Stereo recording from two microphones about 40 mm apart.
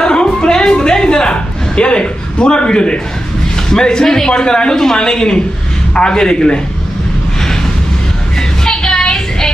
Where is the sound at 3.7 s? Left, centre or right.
Centre.